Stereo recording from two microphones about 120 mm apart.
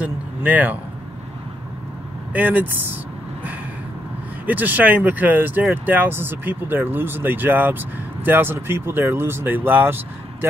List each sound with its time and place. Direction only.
0.0 s speech: 15° right (ahead or behind)
2.3 s speech: 15° right (ahead or behind)
4.5 s speech: 15° right (ahead or behind)